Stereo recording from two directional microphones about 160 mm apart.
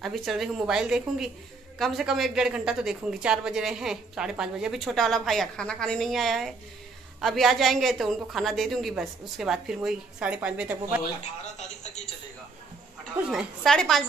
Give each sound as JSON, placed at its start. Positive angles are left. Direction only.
{"t": 0.0, "sound": "a woman's voice", "side_deg": 0}
{"t": 11.5, "sound": "a sound", "side_deg": 45}
{"t": 13.3, "sound": "a woman's voice", "side_deg": 0}